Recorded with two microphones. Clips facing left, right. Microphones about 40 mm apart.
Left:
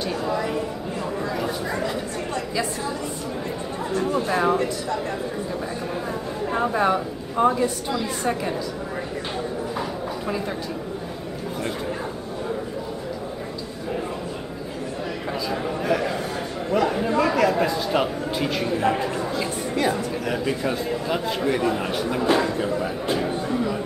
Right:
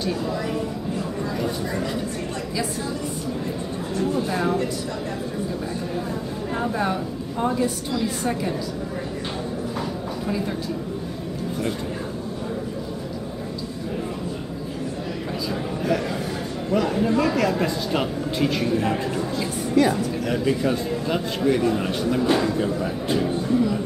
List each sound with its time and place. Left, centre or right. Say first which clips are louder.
0.0 s speech: left 1 dB; centre
4.1 s speech: left 3 dB; left
6.5 s speech: left 4 dB; centre
15.8 s a sound: even; centre
16.7 s speech: even; centre
23.5 s music: right 6 dB; centre